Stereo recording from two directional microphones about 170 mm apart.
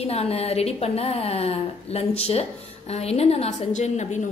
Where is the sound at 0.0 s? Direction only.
35° left (ahead or behind).